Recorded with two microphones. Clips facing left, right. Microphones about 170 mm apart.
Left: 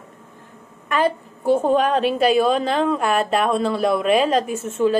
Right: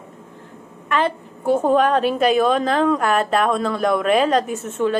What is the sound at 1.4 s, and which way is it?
A woman's voice, 35° left (ahead or behind).